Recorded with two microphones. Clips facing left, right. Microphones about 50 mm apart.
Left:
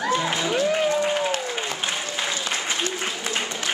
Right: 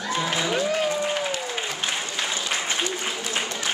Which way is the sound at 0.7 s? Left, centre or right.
Centre.